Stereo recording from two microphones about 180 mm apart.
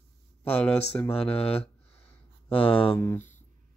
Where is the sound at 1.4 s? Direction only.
35° left (ahead or behind).